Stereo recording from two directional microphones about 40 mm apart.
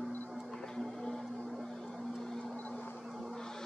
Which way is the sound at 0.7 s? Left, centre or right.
Centre.